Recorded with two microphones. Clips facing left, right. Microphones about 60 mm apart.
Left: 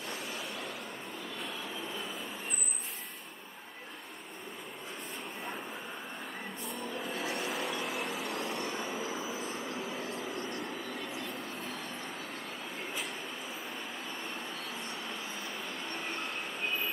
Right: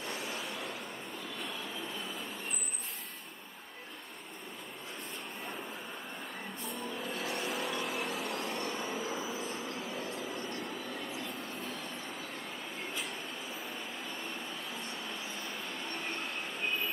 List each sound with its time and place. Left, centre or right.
0.0 s a sound: centre
6.7 s vehicle: centre
14.7 s vehicle: centre